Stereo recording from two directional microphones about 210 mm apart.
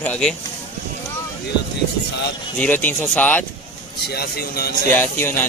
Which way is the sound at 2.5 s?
10° left (ahead or behind).